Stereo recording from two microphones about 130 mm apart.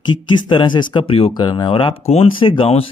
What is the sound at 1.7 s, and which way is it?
Speech, 45° left (ahead or behind).